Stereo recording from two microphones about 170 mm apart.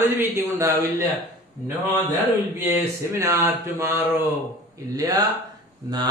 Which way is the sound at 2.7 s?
15° right (ahead or behind).